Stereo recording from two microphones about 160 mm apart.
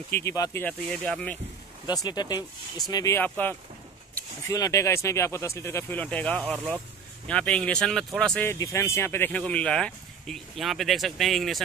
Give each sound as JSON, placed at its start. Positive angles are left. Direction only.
{"t": 0.1, "sound": "speech", "side_deg": 20}
{"t": 1.9, "sound": "speech", "side_deg": 25}
{"t": 3.3, "sound": "speech", "side_deg": 10}
{"t": 8.5, "sound": "speech", "side_deg": 20}